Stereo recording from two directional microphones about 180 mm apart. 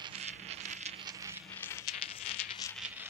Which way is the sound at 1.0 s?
15° right (ahead or behind).